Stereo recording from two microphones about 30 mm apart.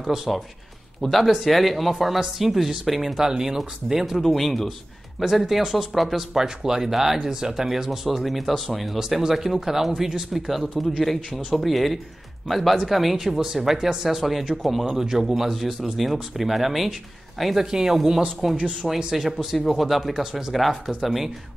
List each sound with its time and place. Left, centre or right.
0.0 s speech: centre
1.0 s speech: centre
3.2 s speech: centre
4.2 s speech: centre
6.3 s speech: centre
10.8 s speech: centre
13.4 s speech: centre
17.6 s speech: centre
18.6 s speech: right
19.1 s speech: centre
20.5 s speech: centre